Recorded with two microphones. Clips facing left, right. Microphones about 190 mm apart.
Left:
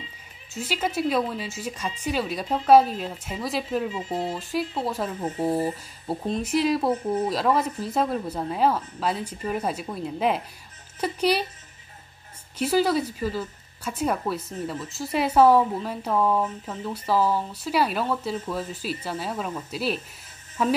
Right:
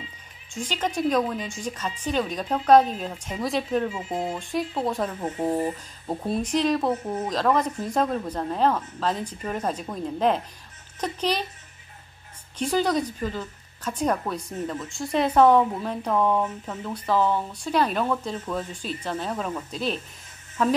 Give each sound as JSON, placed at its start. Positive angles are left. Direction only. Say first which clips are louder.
{"t": 0.6, "sound": "speech", "louder": "even", "side_deg": 5}
{"t": 12.5, "sound": "speech", "louder": "left 1 dB", "side_deg": 5}